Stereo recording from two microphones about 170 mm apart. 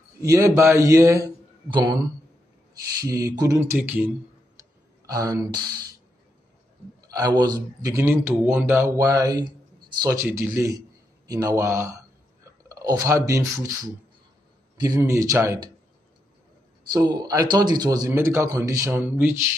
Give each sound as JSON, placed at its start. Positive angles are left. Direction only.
{"t": 0.2, "sound": "a man's voice", "side_deg": -20}
{"t": 3.0, "sound": "a man's voice", "side_deg": -20}
{"t": 4.6, "sound": "a sound", "side_deg": -20}
{"t": 7.0, "sound": "a man's voice", "side_deg": -20}
{"t": 15.0, "sound": "speech", "side_deg": -20}
{"t": 16.9, "sound": "a man's voice", "side_deg": -25}